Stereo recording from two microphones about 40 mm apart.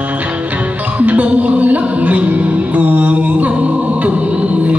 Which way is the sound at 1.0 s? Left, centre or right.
Right.